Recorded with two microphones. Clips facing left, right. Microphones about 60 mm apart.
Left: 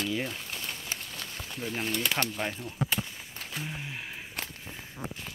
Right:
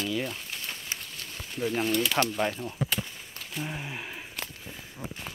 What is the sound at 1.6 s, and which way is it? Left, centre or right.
Speech, centre.